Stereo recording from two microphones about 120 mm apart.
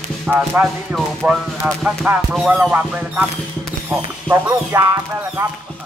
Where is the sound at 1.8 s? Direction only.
10° right (ahead or behind).